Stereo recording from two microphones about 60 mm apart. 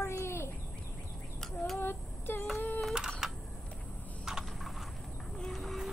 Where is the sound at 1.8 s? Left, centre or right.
Left.